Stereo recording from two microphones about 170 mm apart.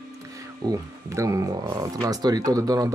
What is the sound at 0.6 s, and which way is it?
Speech, 20° right (ahead or behind).